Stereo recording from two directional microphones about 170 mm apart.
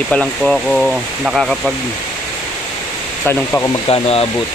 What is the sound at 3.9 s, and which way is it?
Speech, 35° left (ahead or behind).